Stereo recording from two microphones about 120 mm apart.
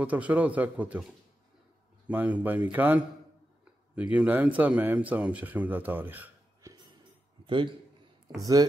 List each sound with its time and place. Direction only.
0.0 s speech: 10° right (ahead or behind)
2.0 s speech: 15° right (ahead or behind)
6.6 s music: 25° right (ahead or behind)
7.4 s a man's voice: 45° right (ahead or behind)
8.3 s speech: 35° right (ahead or behind)